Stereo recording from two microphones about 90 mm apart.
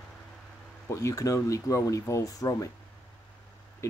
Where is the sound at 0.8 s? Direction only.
35° left (ahead or behind).